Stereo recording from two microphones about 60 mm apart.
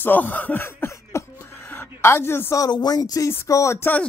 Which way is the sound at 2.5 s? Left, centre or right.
Left.